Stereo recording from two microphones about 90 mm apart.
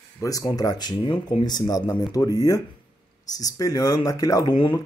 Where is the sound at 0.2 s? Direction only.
40° left (ahead or behind).